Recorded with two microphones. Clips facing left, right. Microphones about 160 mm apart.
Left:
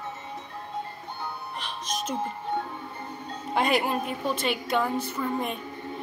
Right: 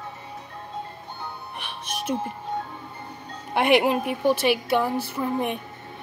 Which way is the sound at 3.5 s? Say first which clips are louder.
Right 5 dB; 70° right (ahead or behind).